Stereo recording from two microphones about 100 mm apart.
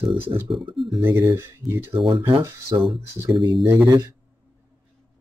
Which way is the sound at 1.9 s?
70° right (ahead or behind).